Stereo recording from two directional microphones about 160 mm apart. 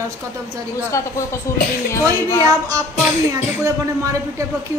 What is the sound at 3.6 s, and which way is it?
Speech, 20° right (ahead or behind).